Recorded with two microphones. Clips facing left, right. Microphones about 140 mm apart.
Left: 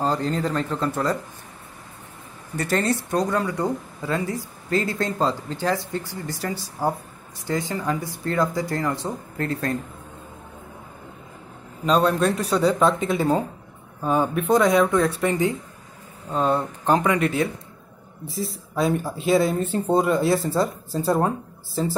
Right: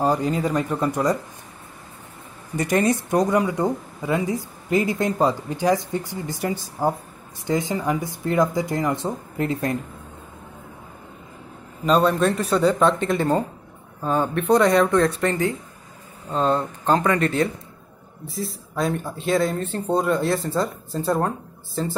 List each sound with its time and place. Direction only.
0.0 s speech: 10° right (ahead or behind)
2.5 s speech: 15° right (ahead or behind)
11.8 s speech: centre (ahead or behind)